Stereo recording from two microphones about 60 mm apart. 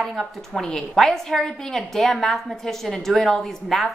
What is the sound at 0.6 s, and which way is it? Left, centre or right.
A woman's voice, centre.